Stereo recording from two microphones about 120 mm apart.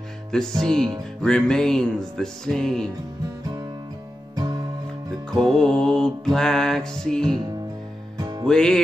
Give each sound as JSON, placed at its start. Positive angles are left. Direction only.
{"t": 0.3, "sound": "mantra", "side_deg": 5}
{"t": 5.3, "sound": "mantra", "side_deg": 5}
{"t": 8.2, "sound": "music", "side_deg": -35}
{"t": 8.5, "sound": "mantra", "side_deg": 5}